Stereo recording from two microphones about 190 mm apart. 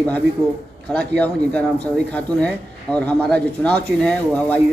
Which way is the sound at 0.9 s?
5° left (ahead or behind).